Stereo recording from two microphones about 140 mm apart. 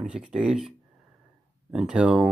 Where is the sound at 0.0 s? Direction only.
5° right (ahead or behind).